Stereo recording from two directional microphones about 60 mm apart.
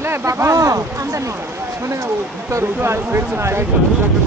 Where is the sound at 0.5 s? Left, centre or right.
Right.